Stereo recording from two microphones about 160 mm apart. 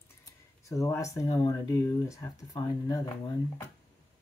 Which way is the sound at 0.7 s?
20° left (ahead or behind).